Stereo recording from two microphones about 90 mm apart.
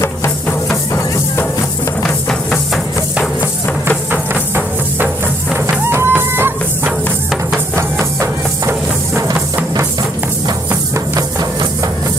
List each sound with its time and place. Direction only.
2.0 s music: 5° left (ahead or behind)
4.1 s music: 20° right (ahead or behind)
8.6 s music: 30° right (ahead or behind)